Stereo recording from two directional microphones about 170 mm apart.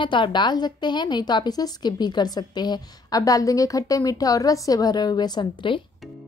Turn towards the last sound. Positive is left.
turn(degrees=30)  # may be behind; listen again after turning